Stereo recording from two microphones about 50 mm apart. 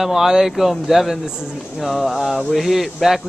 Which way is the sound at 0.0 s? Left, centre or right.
Centre.